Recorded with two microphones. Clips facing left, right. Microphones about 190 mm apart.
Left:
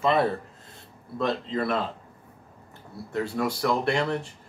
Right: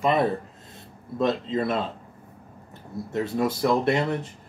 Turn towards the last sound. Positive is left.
turn(degrees=-20)  # may be behind; listen again after turning